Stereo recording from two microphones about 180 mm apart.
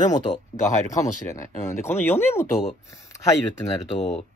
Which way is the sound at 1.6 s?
10° left (ahead or behind).